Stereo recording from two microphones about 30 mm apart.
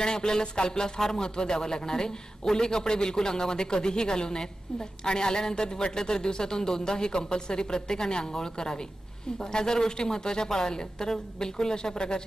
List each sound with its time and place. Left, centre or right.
0.0 s speech: left